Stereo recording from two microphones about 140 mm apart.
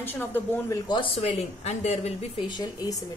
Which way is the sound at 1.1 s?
50° left (ahead or behind).